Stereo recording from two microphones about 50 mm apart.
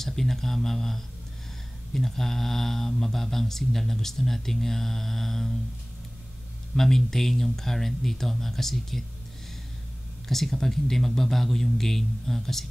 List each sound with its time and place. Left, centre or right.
0.0 s speech: centre
6.7 s speech: centre
10.2 s speech: centre